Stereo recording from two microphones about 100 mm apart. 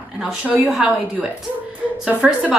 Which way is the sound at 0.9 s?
15° right (ahead or behind).